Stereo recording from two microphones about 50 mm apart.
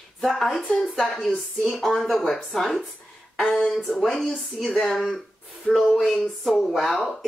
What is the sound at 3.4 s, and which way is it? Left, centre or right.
Speech, centre.